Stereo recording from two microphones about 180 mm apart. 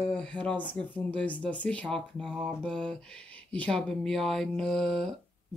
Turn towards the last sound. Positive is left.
turn(degrees=0)  # may be behind; listen again after turning